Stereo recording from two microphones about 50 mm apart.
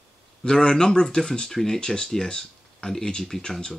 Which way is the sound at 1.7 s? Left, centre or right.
Centre.